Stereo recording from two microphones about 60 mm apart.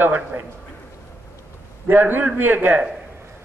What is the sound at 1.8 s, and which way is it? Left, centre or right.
Speech, right.